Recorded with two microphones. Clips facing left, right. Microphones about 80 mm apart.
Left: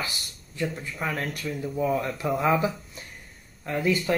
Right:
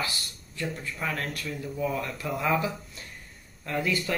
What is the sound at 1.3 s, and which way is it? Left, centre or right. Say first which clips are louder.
Speech: left 4 dB; centre.